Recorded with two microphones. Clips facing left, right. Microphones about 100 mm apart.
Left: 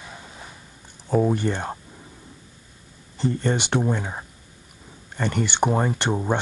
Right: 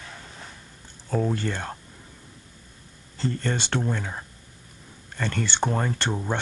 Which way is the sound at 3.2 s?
15° left (ahead or behind).